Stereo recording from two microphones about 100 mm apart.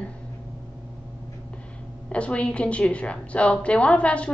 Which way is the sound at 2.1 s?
10° left (ahead or behind).